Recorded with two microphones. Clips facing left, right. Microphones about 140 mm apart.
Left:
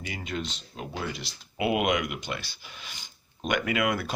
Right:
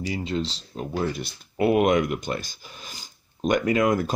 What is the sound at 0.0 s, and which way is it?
Speech, 30° right (ahead or behind).